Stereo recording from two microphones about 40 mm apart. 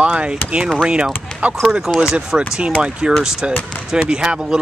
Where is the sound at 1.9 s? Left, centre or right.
Right.